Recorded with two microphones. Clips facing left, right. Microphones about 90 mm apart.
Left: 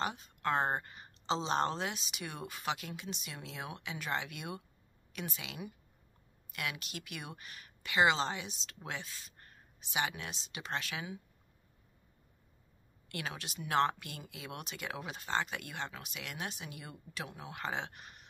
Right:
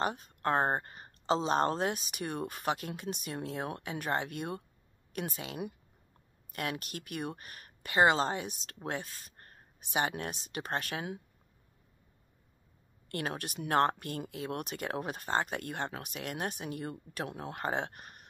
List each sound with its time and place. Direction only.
0.0 s speech: 45° right (ahead or behind)
13.1 s speech: 45° right (ahead or behind)